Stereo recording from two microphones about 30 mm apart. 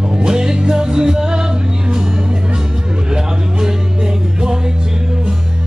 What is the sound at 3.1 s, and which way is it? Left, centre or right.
Music, right.